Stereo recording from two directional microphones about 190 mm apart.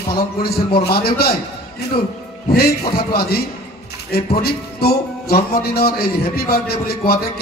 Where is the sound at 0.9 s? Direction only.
55° left (ahead or behind).